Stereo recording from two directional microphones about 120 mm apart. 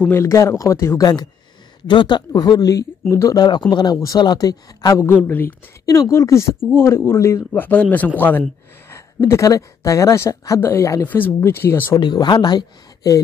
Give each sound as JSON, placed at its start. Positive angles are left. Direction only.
{"t": 0.1, "sound": "speech", "side_deg": 25}
{"t": 5.1, "sound": "a man's voice", "side_deg": 15}
{"t": 5.9, "sound": "a man's voice", "side_deg": 25}
{"t": 9.3, "sound": "speech", "side_deg": 25}
{"t": 12.0, "sound": "speech", "side_deg": 35}